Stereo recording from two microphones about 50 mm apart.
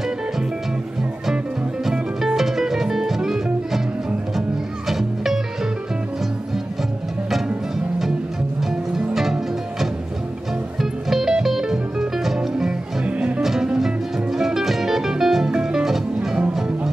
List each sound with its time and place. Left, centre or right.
1.9 s music: centre
4.4 s music: centre
9.1 s music: centre
13.0 s music: right
13.4 s music: centre